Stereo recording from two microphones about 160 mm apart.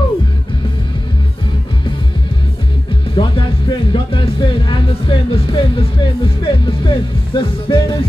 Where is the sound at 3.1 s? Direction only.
35° left (ahead or behind).